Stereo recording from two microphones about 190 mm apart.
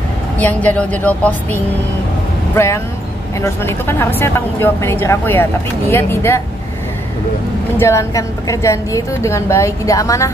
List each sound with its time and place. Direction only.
0.4 s a woman's voice: 10° left (ahead or behind)
7.7 s a woman's voice: 15° left (ahead or behind)